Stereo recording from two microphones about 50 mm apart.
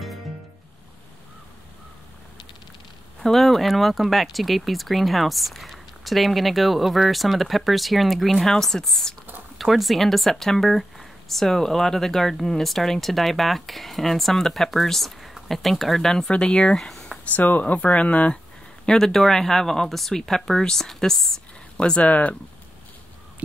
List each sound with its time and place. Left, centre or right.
3.2 s speech: centre
16.7 s a sound: centre
17.4 s speech: left
18.9 s speech: centre
21.7 s speech: left